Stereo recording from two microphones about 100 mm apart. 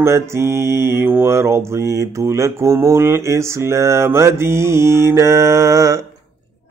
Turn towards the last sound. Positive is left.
turn(degrees=-35)  # may be behind; listen again after turning